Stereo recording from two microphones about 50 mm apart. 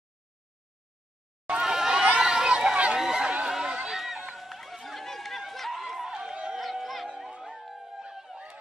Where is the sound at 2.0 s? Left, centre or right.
Centre.